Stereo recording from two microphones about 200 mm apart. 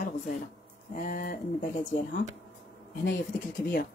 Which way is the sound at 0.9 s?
40° left (ahead or behind).